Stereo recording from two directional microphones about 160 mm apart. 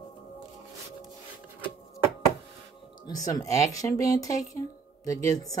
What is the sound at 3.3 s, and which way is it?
A woman's voice, 20° left (ahead or behind).